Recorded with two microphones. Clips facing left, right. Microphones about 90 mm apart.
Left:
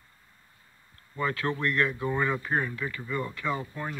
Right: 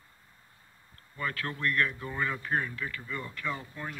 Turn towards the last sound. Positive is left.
turn(degrees=15)  # may be behind; listen again after turning